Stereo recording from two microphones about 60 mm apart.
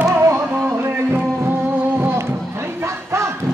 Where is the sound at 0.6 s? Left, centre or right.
Right.